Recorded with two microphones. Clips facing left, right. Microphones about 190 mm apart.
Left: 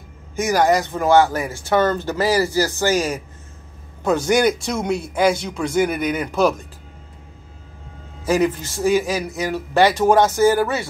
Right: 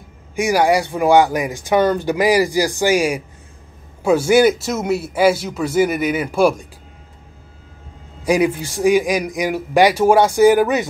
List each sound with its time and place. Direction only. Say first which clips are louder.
0.4 s speech: right 2 dB; 10° right (ahead or behind)
8.2 s speech: right 2 dB; 10° right (ahead or behind)